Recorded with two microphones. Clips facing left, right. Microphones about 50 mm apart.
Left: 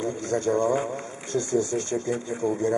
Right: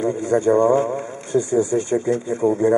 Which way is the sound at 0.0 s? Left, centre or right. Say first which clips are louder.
Right 8 dB; centre.